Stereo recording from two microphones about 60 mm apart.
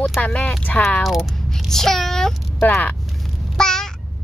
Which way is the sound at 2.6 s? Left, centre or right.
Left.